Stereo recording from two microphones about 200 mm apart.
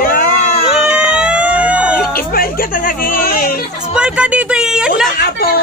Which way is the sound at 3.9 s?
5° right (ahead or behind).